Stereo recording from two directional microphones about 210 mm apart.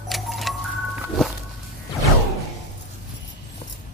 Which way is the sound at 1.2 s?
Centre (ahead or behind).